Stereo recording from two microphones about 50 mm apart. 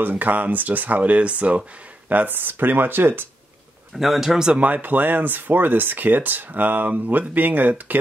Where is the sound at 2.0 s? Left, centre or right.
Right.